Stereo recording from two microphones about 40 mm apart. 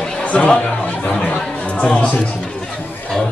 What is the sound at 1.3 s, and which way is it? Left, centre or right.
Chatter, left.